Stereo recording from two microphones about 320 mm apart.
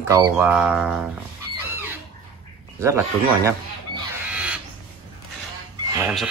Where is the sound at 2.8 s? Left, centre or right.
Centre.